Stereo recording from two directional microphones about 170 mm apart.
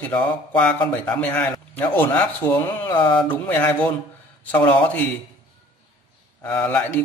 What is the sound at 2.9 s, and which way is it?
Speech, 30° left (ahead or behind).